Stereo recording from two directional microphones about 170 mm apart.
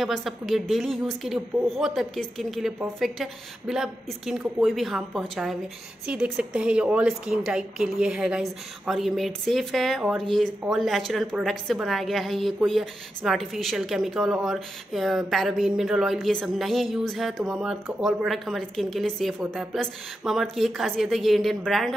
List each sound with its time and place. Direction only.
0.0 s a woman's voice: centre (ahead or behind)